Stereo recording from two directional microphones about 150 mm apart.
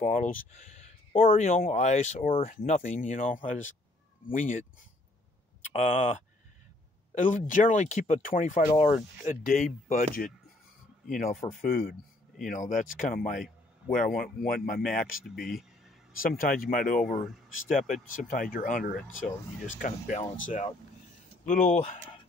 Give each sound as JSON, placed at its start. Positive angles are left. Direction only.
{"t": 0.0, "sound": "speech", "side_deg": 55}
{"t": 7.2, "sound": "speech", "side_deg": 60}
{"t": 12.4, "sound": "speech", "side_deg": 60}
{"t": 14.8, "sound": "speech", "side_deg": 0}
{"t": 16.2, "sound": "speech", "side_deg": 75}